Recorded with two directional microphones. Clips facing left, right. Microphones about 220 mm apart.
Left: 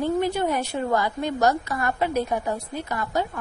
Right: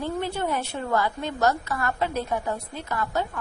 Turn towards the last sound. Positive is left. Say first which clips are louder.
# left 2 dB
turn(degrees=20)  # may be behind; listen again after turning